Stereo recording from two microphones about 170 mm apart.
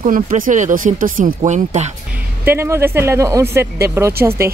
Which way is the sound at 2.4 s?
15° right (ahead or behind).